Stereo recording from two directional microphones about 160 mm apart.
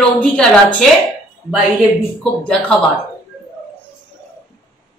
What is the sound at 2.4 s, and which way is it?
Speech, 5° left (ahead or behind).